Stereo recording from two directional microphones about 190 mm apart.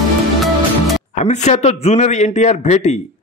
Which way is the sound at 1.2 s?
35° left (ahead or behind).